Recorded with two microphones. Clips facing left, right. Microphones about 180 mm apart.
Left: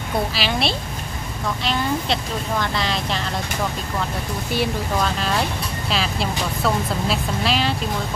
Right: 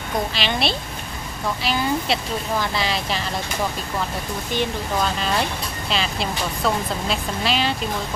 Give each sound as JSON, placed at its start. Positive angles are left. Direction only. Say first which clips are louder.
{"t": 0.3, "sound": "speech", "louder": "left 1 dB", "side_deg": 5}
{"t": 5.9, "sound": "speech", "louder": "left 1 dB", "side_deg": 0}